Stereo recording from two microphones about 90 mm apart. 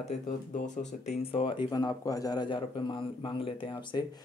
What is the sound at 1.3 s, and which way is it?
Speech, 75° left (ahead or behind).